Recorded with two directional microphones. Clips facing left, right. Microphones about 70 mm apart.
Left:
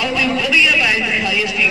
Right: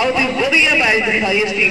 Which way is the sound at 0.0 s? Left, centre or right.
Right.